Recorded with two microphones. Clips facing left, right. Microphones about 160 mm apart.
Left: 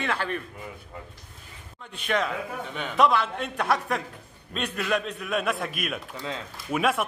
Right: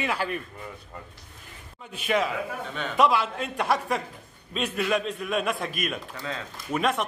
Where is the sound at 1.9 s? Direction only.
5° right (ahead or behind).